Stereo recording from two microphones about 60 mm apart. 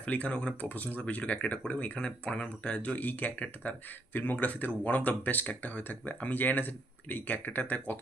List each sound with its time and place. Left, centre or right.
0.0 s speech: left